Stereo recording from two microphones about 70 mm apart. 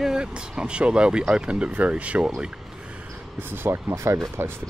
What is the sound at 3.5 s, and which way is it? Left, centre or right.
Speech, right.